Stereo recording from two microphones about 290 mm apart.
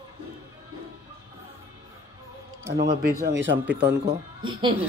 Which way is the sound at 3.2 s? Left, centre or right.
Right.